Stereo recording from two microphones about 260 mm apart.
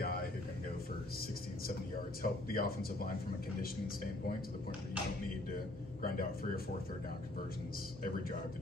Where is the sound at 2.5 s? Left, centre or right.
Left.